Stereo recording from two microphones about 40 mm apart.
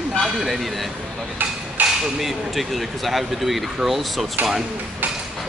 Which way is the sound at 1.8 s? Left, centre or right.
Right.